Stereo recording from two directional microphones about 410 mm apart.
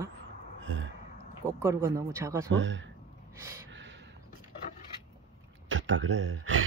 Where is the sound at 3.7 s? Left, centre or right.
Right.